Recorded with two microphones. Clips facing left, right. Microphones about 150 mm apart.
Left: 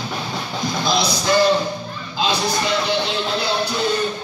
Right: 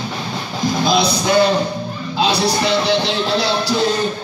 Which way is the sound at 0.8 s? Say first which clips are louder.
Right 3 dB; 60° right (ahead or behind).